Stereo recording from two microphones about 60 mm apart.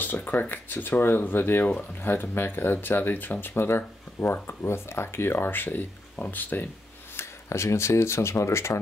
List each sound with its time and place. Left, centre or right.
0.0 s speech: left
7.2 s speech: left